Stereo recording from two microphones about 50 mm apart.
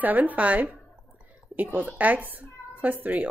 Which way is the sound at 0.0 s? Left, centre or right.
Right.